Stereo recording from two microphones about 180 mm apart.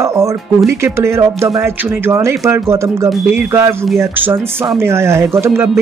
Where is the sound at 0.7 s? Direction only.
15° right (ahead or behind).